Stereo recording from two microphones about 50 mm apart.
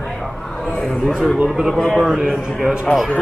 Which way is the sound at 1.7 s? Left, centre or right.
Centre.